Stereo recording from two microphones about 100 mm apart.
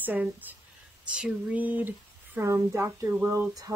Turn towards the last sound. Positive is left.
turn(degrees=-35)  # may be behind; listen again after turning